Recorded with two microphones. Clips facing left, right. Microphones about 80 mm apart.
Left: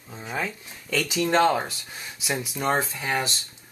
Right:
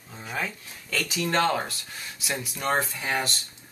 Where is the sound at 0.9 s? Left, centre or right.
Centre.